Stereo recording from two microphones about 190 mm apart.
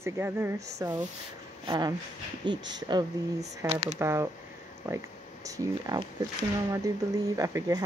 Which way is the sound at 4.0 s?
15° right (ahead or behind).